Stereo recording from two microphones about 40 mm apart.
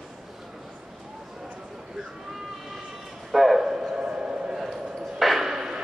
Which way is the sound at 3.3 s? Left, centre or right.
Centre.